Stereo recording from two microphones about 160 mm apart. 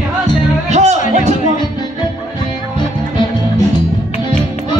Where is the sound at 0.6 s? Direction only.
45° right (ahead or behind).